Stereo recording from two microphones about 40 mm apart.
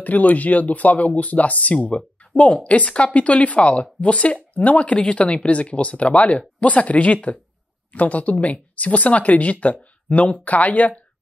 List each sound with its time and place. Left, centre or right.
0.0 s speech: left